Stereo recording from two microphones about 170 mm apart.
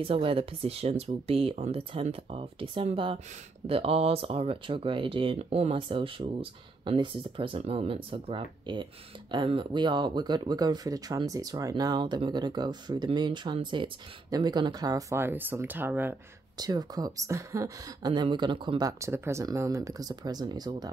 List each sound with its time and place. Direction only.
0.0 s speech: 30° right (ahead or behind); by 16.2 s 10° right (ahead or behind)
16.5 s speech: 25° right (ahead or behind)